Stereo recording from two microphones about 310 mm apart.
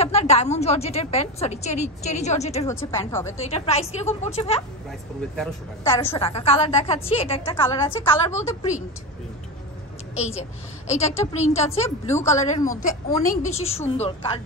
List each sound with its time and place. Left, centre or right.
0.0 s a woman's voice: centre
2.6 s a woman's voice: centre
3.3 s a woman's voice: centre
5.3 s a woman's voice: centre
5.9 s a woman's voice: centre
10.1 s a woman's voice: left
12.1 s a woman's voice: centre
12.8 s a woman's voice: left